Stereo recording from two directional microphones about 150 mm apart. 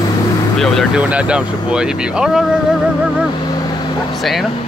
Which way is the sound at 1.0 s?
10° right (ahead or behind).